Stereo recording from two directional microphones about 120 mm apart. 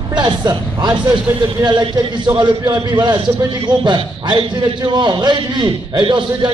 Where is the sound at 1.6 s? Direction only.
40° right (ahead or behind).